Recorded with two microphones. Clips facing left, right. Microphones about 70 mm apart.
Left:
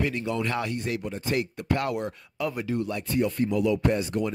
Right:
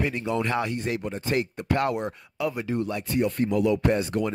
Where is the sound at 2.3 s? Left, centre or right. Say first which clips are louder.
Right 2 dB; centre.